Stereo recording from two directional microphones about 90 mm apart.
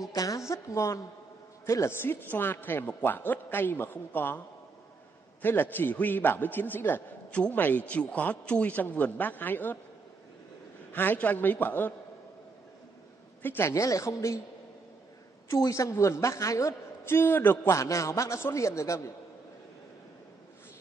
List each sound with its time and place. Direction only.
0.1 s a woman's voice: 40° left (ahead or behind); by 4.4 s 25° left (ahead or behind)
5.4 s a man's voice: 25° left (ahead or behind)
10.9 s a man's voice: 20° left (ahead or behind)
13.4 s a woman's voice: 25° left (ahead or behind)
15.4 s a woman's voice: 40° left (ahead or behind)
17.7 s a woman's voice: 35° left (ahead or behind)